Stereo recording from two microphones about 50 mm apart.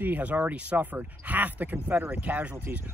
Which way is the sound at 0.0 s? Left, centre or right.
Right.